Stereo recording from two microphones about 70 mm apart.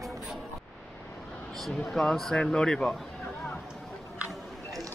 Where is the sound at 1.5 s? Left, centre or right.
Centre.